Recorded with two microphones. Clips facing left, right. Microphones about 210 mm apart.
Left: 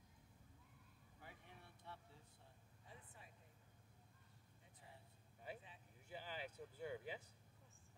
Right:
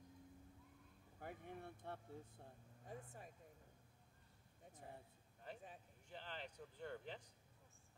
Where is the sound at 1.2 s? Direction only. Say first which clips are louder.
Right 11 dB; 50° right (ahead or behind).